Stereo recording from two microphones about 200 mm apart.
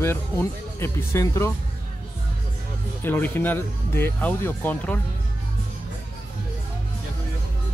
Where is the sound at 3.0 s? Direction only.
10° left (ahead or behind).